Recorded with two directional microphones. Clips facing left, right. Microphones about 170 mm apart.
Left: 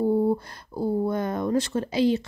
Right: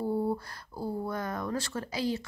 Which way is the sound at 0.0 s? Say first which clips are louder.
Left 8 dB; 20° left (ahead or behind).